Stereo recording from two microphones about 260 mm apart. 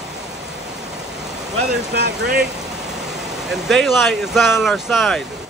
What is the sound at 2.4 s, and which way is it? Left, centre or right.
Vehicle, centre.